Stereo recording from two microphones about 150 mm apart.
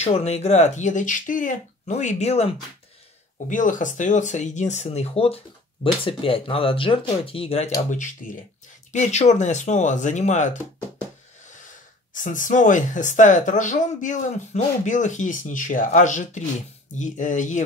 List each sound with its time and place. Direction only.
0.0 s speech: 45° left (ahead or behind)
3.4 s speech: 60° left (ahead or behind); by 7.7 s 45° left (ahead or behind)
8.9 s speech: 50° left (ahead or behind)